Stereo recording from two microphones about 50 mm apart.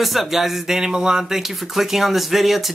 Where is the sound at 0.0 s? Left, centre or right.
Centre.